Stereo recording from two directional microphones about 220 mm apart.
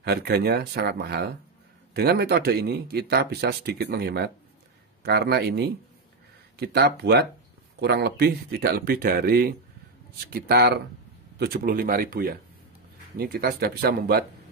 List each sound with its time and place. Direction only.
0.0 s a man's voice: 45° right (ahead or behind)